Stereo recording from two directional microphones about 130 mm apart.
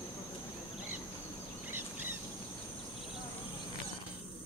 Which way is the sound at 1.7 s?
15° right (ahead or behind).